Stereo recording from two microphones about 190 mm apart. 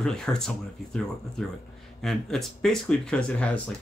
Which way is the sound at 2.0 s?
Centre (ahead or behind).